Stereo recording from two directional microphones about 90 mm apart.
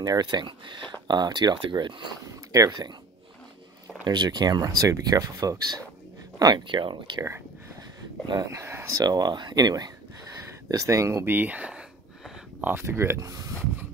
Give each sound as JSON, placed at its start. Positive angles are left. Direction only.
{"t": 0.0, "sound": "speech", "side_deg": -50}
{"t": 1.0, "sound": "speech", "side_deg": -50}
{"t": 4.0, "sound": "speech", "side_deg": -55}
{"t": 6.4, "sound": "speech", "side_deg": -60}
{"t": 8.5, "sound": "speech", "side_deg": -30}
{"t": 9.0, "sound": "speech", "side_deg": -50}
{"t": 10.7, "sound": "speech", "side_deg": -35}
{"t": 11.2, "sound": "speech", "side_deg": -20}